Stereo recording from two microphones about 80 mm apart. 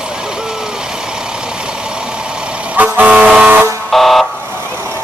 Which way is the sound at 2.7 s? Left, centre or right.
Centre.